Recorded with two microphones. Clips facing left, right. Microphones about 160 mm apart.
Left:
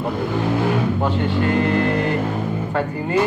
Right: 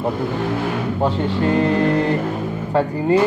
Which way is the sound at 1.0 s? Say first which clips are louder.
Right 1 dB; 35° right (ahead or behind).